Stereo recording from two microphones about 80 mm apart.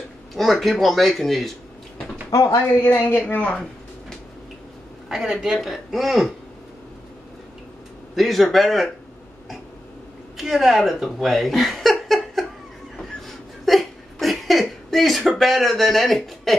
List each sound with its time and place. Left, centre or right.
0.4 s speech: centre
2.3 s a woman's voice: left
3.2 s speech: centre
5.1 s speech: centre
8.2 s speech: centre
10.3 s speech: centre
12.9 s a sound: centre
14.2 s speech: centre